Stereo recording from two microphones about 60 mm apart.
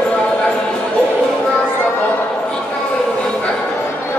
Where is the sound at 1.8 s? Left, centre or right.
Left.